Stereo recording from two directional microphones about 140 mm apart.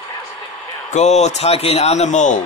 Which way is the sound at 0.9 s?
55° left (ahead or behind).